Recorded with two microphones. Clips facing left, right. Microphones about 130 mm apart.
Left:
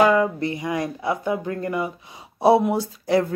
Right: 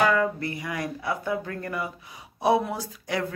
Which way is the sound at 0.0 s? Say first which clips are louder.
Left 5 dB; 20° left (ahead or behind).